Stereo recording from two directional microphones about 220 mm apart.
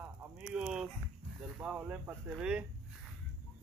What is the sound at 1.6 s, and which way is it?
Speech, 5° right (ahead or behind).